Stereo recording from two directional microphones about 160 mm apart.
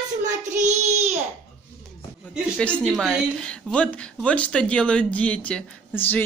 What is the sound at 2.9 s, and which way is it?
Speech, centre (ahead or behind).